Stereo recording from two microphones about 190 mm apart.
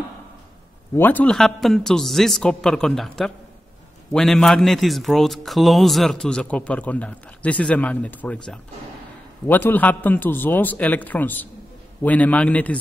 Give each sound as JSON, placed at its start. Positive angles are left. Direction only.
{"t": 0.9, "sound": "a man's voice", "side_deg": 10}